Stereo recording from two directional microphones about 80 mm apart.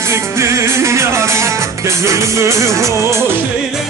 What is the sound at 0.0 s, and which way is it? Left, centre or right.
Music, right.